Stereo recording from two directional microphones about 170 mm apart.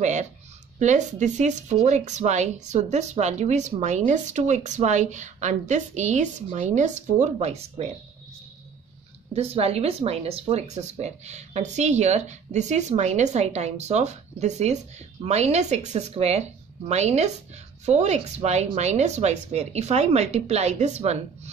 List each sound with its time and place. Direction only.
0.0 s a woman's voice: 45° right (ahead or behind)
9.3 s speech: 35° right (ahead or behind)